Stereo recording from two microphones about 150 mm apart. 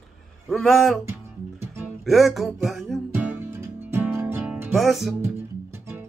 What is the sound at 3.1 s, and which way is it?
Music, 15° right (ahead or behind).